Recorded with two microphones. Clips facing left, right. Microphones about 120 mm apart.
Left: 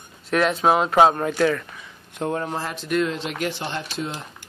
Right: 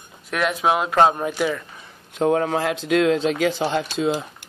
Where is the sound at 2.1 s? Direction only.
90° right.